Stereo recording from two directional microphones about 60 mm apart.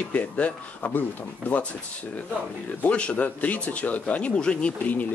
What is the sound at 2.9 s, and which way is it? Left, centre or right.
Speech, left.